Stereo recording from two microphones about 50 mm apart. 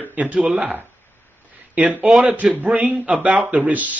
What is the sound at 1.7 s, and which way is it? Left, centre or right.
A man's voice, right.